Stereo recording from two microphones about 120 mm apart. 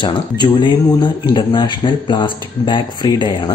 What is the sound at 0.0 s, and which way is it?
Speech, 40° left (ahead or behind).